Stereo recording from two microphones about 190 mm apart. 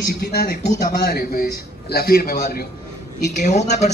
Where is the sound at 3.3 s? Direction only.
40° left (ahead or behind).